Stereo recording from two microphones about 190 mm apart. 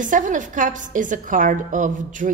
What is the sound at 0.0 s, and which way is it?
A woman's voice, 45° right (ahead or behind).